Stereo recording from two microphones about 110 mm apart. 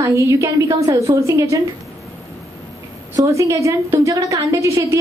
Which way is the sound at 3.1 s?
30° right (ahead or behind).